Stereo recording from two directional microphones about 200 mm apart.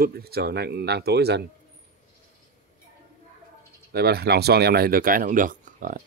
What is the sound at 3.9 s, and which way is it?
Speech, 55° right (ahead or behind).